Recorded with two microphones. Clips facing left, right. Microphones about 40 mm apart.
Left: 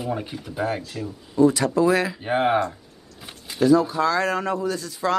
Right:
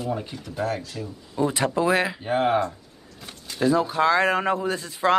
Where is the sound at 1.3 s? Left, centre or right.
Right.